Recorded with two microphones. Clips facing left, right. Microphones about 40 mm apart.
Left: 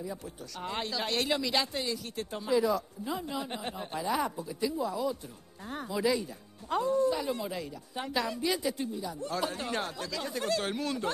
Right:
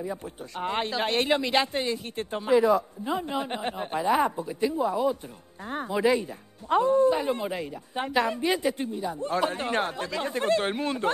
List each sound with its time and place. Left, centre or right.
0.0 s speech: right